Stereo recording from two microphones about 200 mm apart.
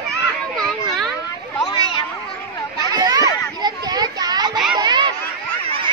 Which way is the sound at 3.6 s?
20° right (ahead or behind).